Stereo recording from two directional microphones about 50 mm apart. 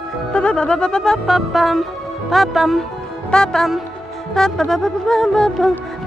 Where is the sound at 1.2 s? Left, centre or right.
Centre.